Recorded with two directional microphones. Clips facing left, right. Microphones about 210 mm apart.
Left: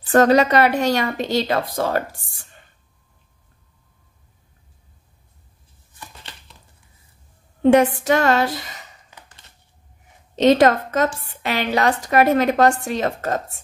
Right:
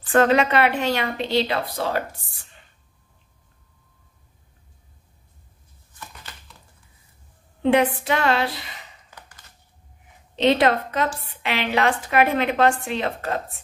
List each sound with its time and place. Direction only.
0.1 s a woman's voice: 40° left (ahead or behind)
7.6 s a woman's voice: 45° left (ahead or behind)
10.3 s a woman's voice: 45° left (ahead or behind)